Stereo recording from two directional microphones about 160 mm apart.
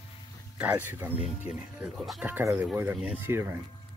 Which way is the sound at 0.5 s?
10° right (ahead or behind).